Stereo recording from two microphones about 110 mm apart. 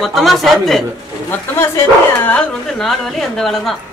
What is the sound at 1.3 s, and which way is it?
Speech, 20° left (ahead or behind).